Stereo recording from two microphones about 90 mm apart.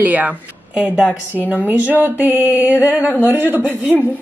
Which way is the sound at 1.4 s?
20° right (ahead or behind).